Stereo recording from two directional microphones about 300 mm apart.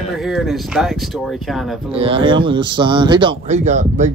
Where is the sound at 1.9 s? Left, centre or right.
Centre.